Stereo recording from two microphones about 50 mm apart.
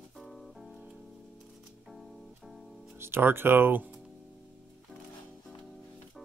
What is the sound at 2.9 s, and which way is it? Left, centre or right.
Speech, right.